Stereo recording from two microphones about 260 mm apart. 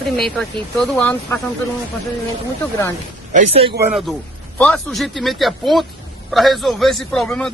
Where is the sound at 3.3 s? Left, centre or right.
Right.